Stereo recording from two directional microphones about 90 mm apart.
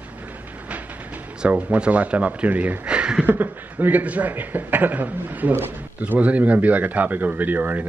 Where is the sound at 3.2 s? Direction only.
20° right (ahead or behind).